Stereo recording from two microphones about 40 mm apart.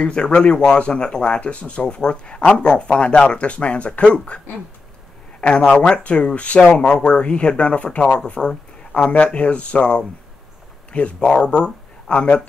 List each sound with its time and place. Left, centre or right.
0.0 s speech: left
5.6 s speech: centre
6.0 s speech: left
6.8 s speech: left
8.4 s a sound: centre
9.1 s speech: left